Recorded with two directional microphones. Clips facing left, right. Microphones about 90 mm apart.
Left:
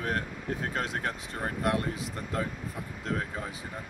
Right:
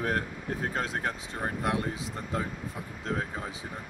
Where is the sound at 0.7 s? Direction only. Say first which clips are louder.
Right 1 dB; 30° right (ahead or behind).